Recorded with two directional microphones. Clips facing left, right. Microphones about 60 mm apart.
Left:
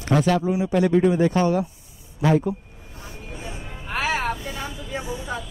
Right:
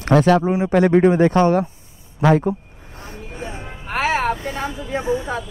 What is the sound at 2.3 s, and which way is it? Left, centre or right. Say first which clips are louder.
Music: right 4 dB; right.